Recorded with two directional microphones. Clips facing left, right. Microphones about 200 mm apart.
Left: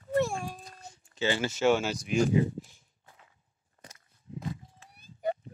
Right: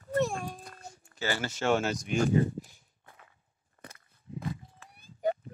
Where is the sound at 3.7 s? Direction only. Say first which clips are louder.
Right 3 dB; 55° right (ahead or behind).